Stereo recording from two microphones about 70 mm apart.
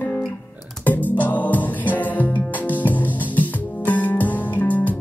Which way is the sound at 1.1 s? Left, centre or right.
Left.